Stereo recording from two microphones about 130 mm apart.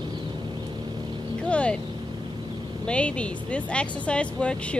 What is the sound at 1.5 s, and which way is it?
Speech, 10° left (ahead or behind).